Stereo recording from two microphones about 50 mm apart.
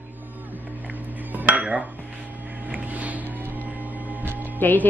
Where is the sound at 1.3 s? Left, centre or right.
Right.